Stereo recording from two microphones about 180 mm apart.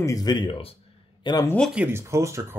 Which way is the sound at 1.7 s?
10° right (ahead or behind).